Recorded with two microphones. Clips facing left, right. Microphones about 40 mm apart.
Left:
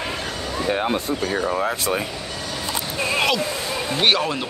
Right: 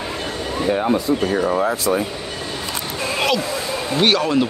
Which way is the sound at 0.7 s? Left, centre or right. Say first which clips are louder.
Right 4 dB; left.